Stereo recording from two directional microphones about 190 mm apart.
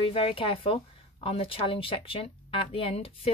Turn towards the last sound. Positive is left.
turn(degrees=30)  # may be behind; listen again after turning